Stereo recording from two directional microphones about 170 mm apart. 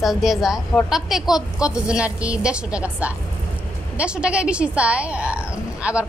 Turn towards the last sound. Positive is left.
turn(degrees=-5)  # may be behind; listen again after turning